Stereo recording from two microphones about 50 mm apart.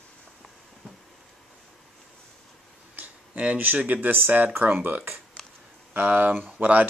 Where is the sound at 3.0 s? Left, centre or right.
Right.